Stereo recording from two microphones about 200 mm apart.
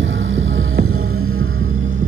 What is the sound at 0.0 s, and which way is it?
Music, 75° right (ahead or behind).